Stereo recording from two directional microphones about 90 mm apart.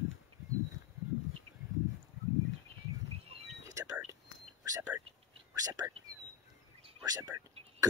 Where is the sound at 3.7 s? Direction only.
40° right (ahead or behind).